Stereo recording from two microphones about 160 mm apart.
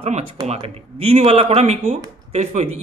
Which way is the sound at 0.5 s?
40° right (ahead or behind).